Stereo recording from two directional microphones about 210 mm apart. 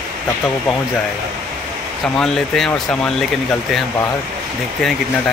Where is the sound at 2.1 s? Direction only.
Centre (ahead or behind).